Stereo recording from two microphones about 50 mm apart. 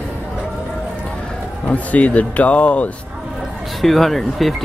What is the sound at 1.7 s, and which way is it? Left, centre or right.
Speech, left.